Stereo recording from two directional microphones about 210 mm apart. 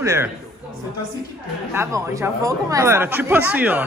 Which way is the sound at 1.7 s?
15° right (ahead or behind).